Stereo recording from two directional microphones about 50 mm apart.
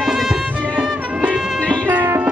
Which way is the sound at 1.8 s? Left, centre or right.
Right.